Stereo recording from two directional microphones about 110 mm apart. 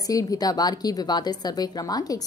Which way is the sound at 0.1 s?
30° left (ahead or behind).